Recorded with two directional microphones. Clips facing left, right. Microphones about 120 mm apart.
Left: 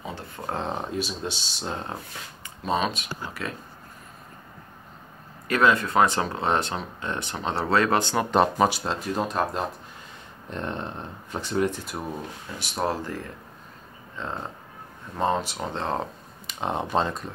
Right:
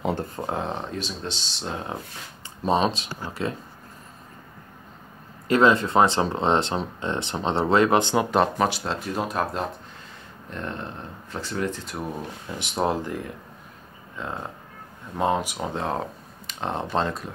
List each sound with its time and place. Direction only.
0.0 s speech: 50° right (ahead or behind)
0.6 s speech: 5° left (ahead or behind)
2.6 s speech: 35° right (ahead or behind)
5.5 s speech: 25° right (ahead or behind)
8.3 s speech: centre (ahead or behind)
10.5 s a sound: 20° left (ahead or behind)
11.4 s speech: 15° left (ahead or behind)
12.5 s speech: 20° right (ahead or behind)
16.4 s speech: 5° left (ahead or behind)